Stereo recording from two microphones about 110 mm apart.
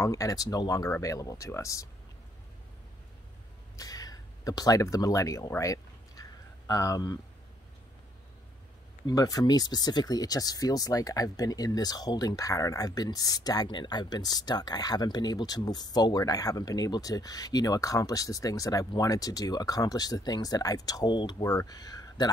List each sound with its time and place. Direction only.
0.0 s speech: 30° left (ahead or behind)
3.7 s speech: 35° left (ahead or behind)
5.6 s a sound: 30° left (ahead or behind)
6.7 s speech: 30° left (ahead or behind)
9.0 s speech: 35° left (ahead or behind)